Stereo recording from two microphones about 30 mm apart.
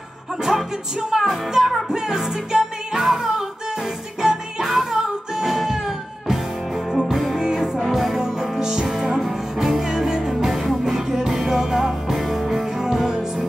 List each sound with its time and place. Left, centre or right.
0.4 s music: centre
7.3 s music: right
7.9 s music: centre
8.2 s music: centre
8.8 s music: centre
10.3 s music: centre